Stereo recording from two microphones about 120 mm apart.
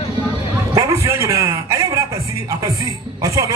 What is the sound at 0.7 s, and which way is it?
Speech, 25° right (ahead or behind).